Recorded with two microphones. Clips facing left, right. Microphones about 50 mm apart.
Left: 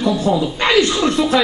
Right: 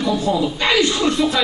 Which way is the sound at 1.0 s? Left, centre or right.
Centre.